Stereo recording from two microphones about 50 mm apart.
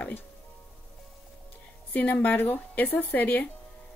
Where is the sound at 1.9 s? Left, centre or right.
Left.